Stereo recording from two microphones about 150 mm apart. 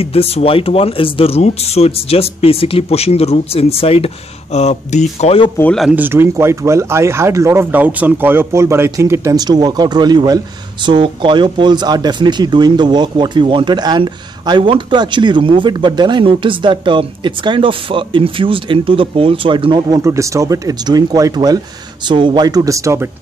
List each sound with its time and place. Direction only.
0.0 s speech: 40° left (ahead or behind)
5.6 s speech: 5° left (ahead or behind)
5.9 s speech: 10° right (ahead or behind); by 20.0 s 30° right (ahead or behind)
20.0 s speech: 20° right (ahead or behind)